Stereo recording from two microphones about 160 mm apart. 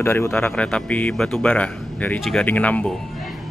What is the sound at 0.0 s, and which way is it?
Speech, 15° left (ahead or behind).